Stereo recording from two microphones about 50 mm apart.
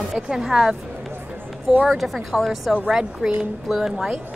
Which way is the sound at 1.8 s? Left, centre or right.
Centre.